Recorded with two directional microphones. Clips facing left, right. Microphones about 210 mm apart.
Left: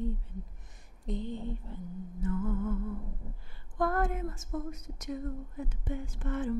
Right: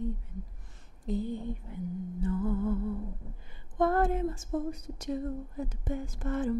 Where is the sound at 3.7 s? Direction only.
25° right (ahead or behind).